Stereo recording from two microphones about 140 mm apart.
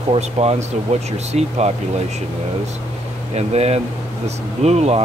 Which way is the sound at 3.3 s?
50° right (ahead or behind).